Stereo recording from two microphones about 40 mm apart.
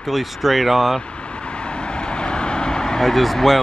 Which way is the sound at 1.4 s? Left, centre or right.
Left.